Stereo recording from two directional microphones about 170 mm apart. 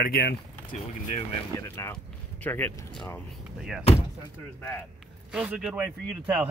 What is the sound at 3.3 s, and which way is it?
Speech, 5° right (ahead or behind).